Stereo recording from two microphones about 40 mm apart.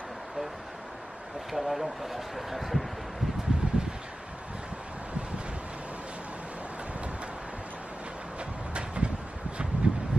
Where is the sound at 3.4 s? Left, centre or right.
Centre.